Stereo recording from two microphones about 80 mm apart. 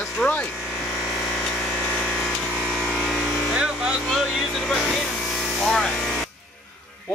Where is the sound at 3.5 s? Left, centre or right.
Centre.